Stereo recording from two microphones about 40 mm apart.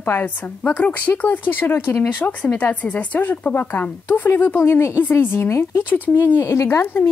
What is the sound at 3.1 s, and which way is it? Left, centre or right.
Speech, left.